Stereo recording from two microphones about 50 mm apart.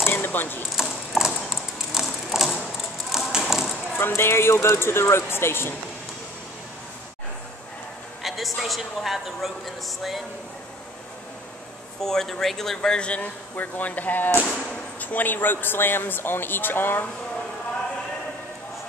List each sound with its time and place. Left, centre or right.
0.0 s a sound: left
0.8 s clip-clop: centre
2.0 s a sound: centre
4.1 s speech: left
8.2 s a man's voice: centre
12.0 s speech: centre
13.2 s a man's voice: left